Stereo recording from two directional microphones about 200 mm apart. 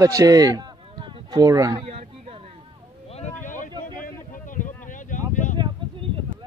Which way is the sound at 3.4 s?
40° left (ahead or behind).